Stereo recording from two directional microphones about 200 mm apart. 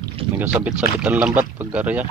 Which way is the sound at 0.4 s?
10° right (ahead or behind).